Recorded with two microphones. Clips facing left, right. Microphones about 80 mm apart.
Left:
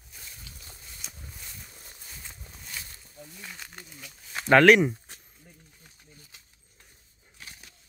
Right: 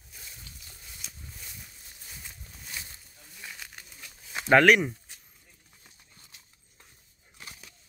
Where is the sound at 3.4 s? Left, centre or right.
Centre.